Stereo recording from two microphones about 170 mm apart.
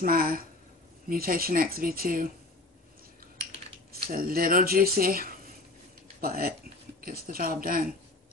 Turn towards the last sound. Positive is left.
turn(degrees=-55)  # may be behind; listen again after turning